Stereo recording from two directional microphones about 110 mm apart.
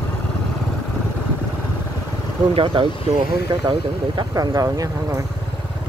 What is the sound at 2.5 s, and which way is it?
Speech, 50° right (ahead or behind).